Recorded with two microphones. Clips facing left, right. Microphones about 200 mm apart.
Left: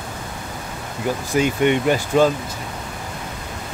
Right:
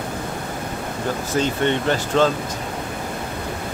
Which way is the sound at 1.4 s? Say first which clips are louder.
Left 3 dB; 10° left (ahead or behind).